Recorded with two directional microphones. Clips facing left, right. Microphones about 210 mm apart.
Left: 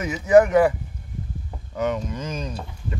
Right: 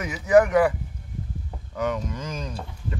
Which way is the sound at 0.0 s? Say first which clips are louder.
Left 3 dB; 25° left (ahead or behind).